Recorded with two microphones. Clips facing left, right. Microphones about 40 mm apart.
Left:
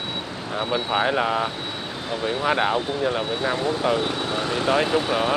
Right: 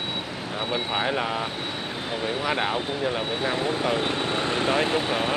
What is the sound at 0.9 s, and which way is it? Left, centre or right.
Speech, centre.